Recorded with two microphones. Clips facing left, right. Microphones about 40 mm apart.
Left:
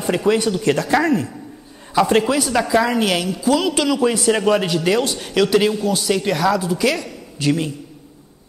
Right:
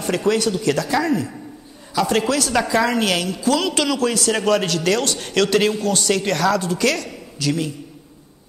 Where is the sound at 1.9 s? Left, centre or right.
Left.